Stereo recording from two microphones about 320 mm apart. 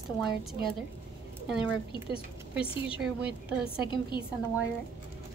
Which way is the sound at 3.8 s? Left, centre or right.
Centre.